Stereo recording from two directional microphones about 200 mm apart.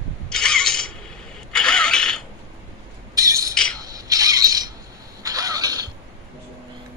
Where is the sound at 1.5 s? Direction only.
5° left (ahead or behind).